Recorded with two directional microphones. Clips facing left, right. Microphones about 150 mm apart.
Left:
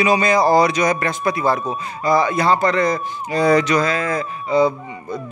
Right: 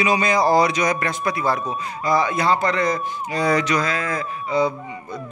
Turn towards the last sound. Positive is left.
turn(degrees=30)  # may be behind; listen again after turning